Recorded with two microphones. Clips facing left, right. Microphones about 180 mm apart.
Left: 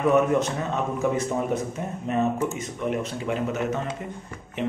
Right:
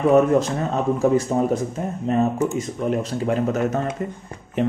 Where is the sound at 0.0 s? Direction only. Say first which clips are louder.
Right 4 dB; 30° right (ahead or behind).